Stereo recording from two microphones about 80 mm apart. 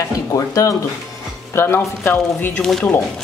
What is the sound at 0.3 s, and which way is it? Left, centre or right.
Speech, left.